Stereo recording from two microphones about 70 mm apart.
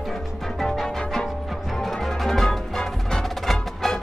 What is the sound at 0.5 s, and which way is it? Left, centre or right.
Music, centre.